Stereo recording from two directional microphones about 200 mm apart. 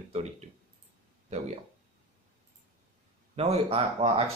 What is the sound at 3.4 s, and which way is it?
Speech, 30° right (ahead or behind).